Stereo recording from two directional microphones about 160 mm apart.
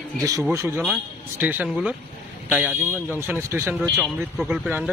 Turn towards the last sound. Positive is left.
turn(degrees=-5)  # may be behind; listen again after turning